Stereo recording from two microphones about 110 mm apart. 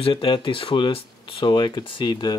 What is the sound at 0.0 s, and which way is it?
Speech, 50° left (ahead or behind).